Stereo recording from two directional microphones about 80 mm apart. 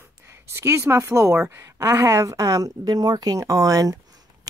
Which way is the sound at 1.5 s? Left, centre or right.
Right.